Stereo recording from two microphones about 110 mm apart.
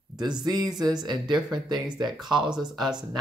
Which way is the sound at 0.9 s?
40° right (ahead or behind).